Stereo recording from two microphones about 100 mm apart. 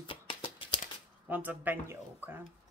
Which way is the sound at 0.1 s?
60° left (ahead or behind).